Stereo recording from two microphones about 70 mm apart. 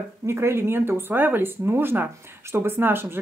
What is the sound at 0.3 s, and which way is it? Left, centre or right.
Speech, right.